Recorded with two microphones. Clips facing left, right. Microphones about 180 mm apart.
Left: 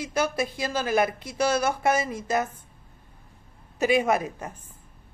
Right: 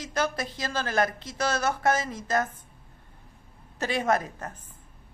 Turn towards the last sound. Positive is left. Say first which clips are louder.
# left 1 dB
turn(degrees=10)  # may be behind; listen again after turning